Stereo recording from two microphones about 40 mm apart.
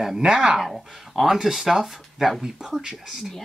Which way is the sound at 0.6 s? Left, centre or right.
Centre.